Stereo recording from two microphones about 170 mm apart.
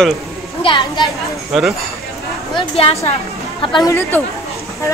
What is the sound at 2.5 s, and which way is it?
A woman's voice, 35° left (ahead or behind).